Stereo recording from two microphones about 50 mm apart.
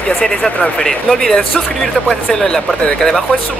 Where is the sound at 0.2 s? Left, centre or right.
Centre.